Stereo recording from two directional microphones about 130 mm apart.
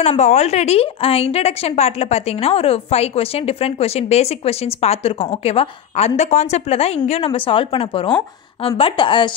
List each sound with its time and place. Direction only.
0.2 s a woman's voice: 60° left (ahead or behind); by 9.3 s 40° left (ahead or behind)